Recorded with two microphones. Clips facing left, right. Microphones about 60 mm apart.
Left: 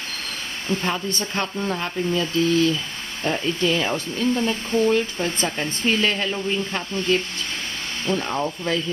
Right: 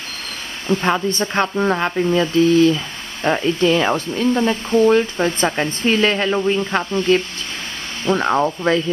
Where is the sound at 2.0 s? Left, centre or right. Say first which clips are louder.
Right 6 dB; right.